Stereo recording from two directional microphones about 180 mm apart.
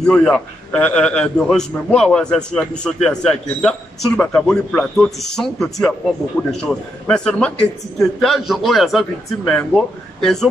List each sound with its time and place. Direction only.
0.0 s a man's voice: 5° left (ahead or behind)